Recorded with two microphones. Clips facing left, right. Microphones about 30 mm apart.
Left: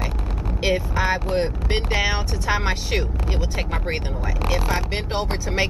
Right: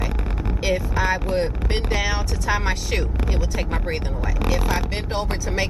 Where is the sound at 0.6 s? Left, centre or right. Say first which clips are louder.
Left 1 dB; centre.